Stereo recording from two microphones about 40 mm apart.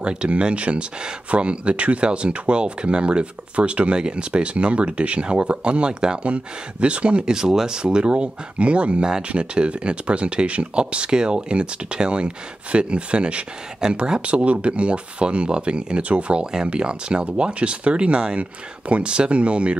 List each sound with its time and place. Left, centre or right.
0.0 s speech: right
7.3 s speech: centre